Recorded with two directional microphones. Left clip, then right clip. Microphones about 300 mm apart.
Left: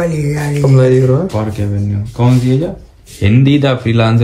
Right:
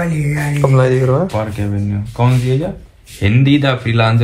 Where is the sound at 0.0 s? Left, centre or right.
Centre.